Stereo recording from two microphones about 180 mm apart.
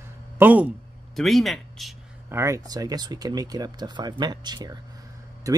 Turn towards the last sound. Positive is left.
turn(degrees=-15)  # may be behind; listen again after turning